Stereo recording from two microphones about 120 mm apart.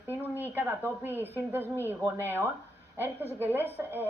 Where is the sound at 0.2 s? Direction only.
20° left (ahead or behind).